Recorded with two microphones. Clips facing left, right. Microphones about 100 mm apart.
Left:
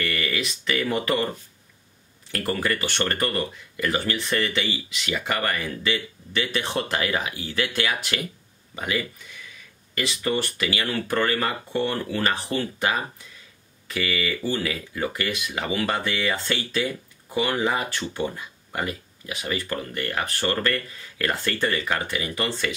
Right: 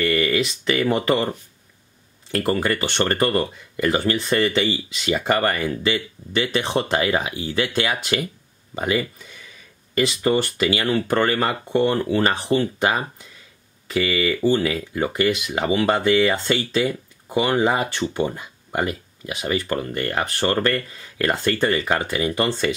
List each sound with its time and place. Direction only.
0.0 s speech: 30° right (ahead or behind)
2.3 s speech: 30° right (ahead or behind)